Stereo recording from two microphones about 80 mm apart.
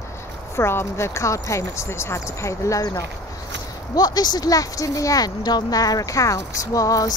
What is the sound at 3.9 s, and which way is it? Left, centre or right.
Speech, left.